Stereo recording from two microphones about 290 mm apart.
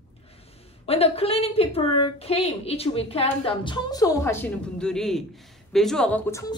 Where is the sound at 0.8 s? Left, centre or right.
Centre.